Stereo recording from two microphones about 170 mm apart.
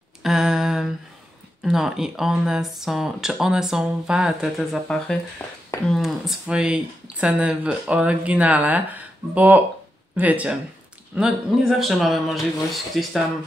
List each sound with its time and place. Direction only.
0.2 s humming: 5° right (ahead or behind)
1.6 s speech: centre (ahead or behind)
5.9 s speech: centre (ahead or behind)